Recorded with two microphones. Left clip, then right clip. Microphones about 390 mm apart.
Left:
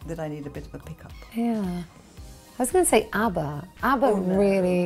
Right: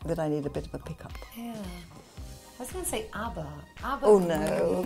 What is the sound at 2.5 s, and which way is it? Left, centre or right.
A woman's voice, left.